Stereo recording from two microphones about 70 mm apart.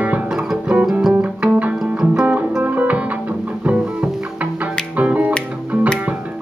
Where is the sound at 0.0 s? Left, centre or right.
Right.